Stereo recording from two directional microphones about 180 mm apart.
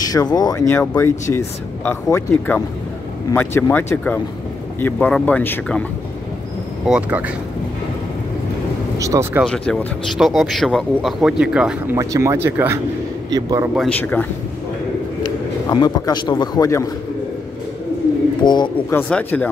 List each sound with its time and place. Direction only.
0.0 s speech: 20° left (ahead or behind)
6.9 s speech: 10° right (ahead or behind)
8.9 s speech: 20° right (ahead or behind)
9.4 s speech: 5° left (ahead or behind)
12.0 s a man's voice: 15° right (ahead or behind)
13.7 s speech: 5° left (ahead or behind)
15.2 s a man's voice: 25° left (ahead or behind)
18.4 s speech: 25° left (ahead or behind)
18.9 s speech: 10° left (ahead or behind)